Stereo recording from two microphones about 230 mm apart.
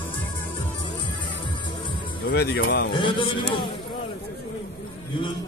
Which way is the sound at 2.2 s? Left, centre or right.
Left.